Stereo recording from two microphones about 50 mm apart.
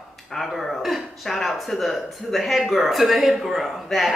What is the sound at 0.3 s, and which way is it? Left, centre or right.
Speech, centre.